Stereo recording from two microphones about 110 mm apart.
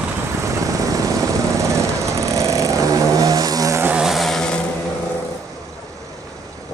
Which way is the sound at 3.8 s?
10° right (ahead or behind).